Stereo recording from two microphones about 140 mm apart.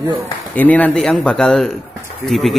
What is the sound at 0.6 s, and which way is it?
Speech, 10° left (ahead or behind).